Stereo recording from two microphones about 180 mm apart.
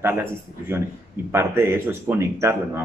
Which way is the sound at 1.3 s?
15° right (ahead or behind).